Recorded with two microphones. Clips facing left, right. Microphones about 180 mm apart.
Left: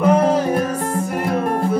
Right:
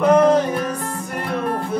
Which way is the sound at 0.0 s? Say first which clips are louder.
Right 1 dB; 10° left (ahead or behind).